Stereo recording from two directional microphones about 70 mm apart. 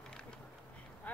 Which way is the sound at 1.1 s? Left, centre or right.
Left.